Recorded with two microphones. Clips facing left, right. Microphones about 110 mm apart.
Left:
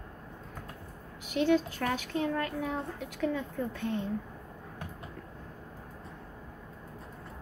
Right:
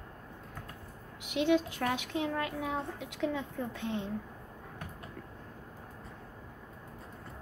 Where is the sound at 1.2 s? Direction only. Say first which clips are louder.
Left 1 dB; 20° right (ahead or behind).